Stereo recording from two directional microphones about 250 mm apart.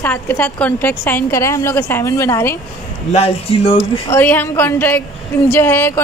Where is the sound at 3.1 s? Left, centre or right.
Left.